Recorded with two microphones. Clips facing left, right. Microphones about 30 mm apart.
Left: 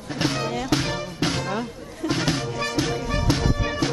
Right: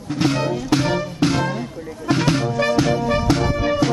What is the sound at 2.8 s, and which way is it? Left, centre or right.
Music, right.